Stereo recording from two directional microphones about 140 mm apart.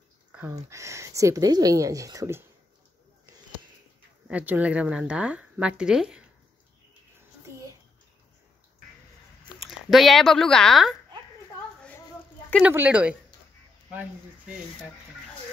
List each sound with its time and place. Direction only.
0.7 s speech: 20° right (ahead or behind)
4.3 s speech: 10° right (ahead or behind)
9.6 s speech: centre (ahead or behind)
12.6 s speech: 10° right (ahead or behind)